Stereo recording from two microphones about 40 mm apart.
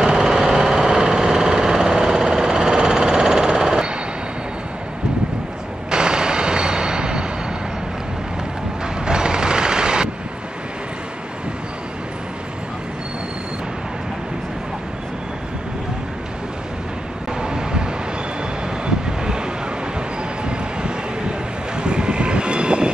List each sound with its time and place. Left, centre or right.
0.0 s engine: centre
5.9 s a sound: centre
9.0 s vehicle: right
17.4 s vehicle: right
18.9 s vehicle: right
21.8 s train: right